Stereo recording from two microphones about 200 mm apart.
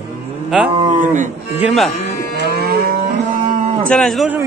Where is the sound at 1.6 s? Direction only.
Centre (ahead or behind).